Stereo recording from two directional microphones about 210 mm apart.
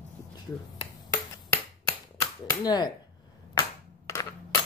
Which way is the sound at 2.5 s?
20° left (ahead or behind).